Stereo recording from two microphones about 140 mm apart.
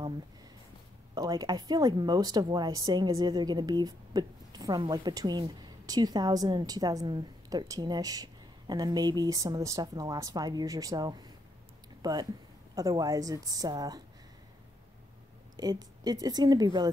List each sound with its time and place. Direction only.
1.1 s a woman's voice: 25° right (ahead or behind)
15.5 s a woman's voice: 30° right (ahead or behind)